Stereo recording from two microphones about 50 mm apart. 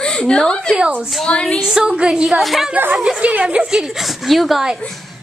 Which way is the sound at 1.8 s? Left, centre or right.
Right.